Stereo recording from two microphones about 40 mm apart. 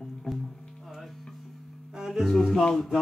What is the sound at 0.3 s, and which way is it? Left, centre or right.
Music, centre.